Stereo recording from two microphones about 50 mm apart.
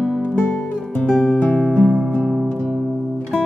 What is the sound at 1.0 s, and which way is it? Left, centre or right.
Music, centre.